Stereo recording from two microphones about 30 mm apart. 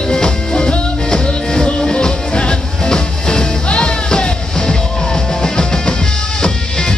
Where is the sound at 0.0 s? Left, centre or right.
Left.